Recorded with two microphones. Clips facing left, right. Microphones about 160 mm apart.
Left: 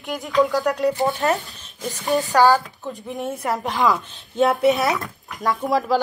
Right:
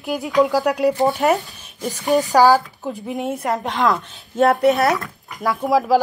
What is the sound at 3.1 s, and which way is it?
A woman's voice, centre (ahead or behind).